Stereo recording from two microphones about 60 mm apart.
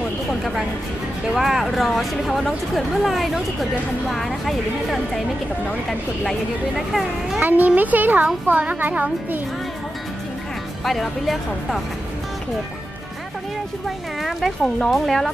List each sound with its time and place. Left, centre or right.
0.4 s speech: centre
7.3 s a child's voice: right
10.8 s speech: centre
13.8 s speech: centre